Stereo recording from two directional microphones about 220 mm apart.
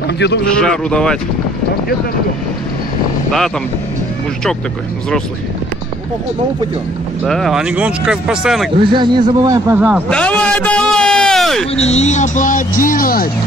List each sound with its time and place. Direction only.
0.6 s speech: 5° left (ahead or behind)
7.2 s speech: centre (ahead or behind)
8.7 s a man's voice: 20° right (ahead or behind)
10.0 s a man's voice: 5° left (ahead or behind)
11.7 s speech: 30° left (ahead or behind)